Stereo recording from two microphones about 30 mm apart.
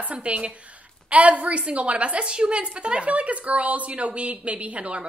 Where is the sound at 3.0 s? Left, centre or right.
Right.